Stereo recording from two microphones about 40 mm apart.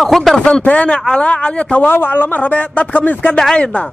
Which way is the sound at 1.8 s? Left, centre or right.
Left.